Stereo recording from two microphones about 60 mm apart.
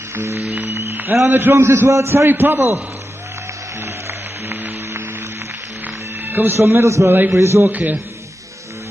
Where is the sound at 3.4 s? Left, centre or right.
Right.